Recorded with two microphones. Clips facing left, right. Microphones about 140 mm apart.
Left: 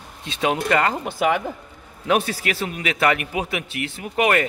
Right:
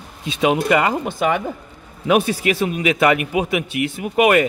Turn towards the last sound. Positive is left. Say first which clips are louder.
# right 5 dB
turn(degrees=-15)  # may be behind; listen again after turning